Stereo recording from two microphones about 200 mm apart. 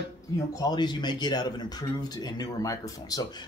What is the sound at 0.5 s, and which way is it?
Speech, 20° left (ahead or behind).